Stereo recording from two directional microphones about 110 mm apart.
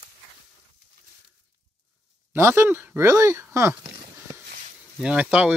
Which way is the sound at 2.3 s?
25° right (ahead or behind).